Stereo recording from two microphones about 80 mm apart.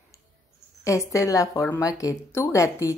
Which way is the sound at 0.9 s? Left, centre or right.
Left.